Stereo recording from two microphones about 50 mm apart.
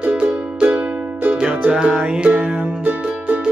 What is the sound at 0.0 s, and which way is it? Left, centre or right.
Music, right.